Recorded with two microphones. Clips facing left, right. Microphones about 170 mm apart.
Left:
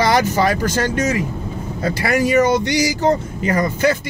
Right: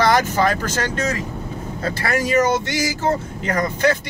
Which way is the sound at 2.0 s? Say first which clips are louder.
Left 3 dB; 15° left (ahead or behind).